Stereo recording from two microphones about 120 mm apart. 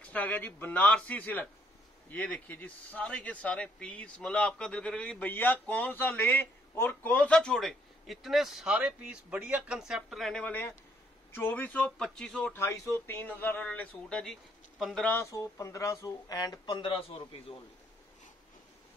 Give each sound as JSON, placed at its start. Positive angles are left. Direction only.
{"t": 0.0, "sound": "speech", "side_deg": 15}
{"t": 12.5, "sound": "speech", "side_deg": 25}
{"t": 15.0, "sound": "speech", "side_deg": 20}